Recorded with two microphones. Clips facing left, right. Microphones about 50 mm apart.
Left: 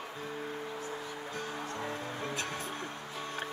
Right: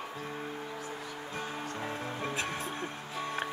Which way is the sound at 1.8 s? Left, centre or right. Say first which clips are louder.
Right 1 dB; right.